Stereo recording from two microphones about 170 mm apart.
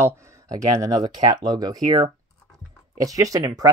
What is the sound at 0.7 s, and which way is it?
Speech, 20° right (ahead or behind).